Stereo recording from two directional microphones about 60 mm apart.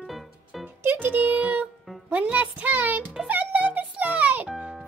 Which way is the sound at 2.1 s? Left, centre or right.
Right.